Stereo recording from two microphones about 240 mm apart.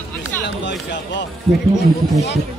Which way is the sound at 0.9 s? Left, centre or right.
Left.